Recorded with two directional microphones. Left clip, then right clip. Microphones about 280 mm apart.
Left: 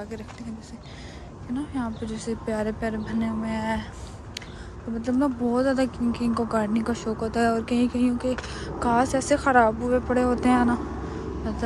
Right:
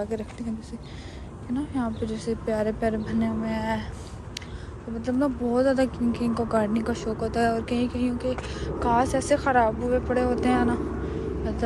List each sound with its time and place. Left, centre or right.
0.1 s speech: centre
1.6 s speech: centre
5.0 s speech: centre